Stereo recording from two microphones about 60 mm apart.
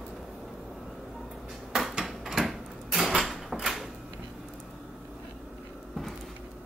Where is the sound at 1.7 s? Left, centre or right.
Centre.